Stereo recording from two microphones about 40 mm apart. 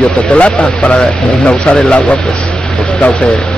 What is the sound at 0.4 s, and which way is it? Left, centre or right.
Speech, left.